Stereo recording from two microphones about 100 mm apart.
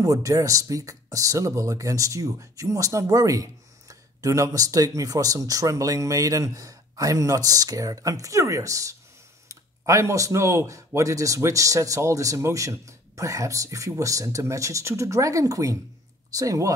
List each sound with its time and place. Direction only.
0.0 s speech: 35° right (ahead or behind)